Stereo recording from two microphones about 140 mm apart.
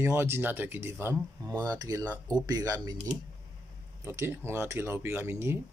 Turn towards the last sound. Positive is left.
turn(degrees=-20)  # may be behind; listen again after turning